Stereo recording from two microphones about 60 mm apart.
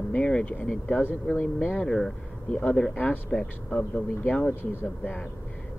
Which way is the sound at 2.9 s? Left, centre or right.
Left.